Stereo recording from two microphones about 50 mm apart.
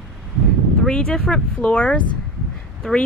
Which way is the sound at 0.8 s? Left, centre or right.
Centre.